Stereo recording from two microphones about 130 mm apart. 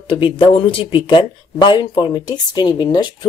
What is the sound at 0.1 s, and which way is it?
Speech, 40° left (ahead or behind).